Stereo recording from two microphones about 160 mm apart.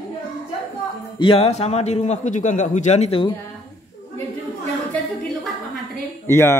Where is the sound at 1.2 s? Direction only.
35° left (ahead or behind).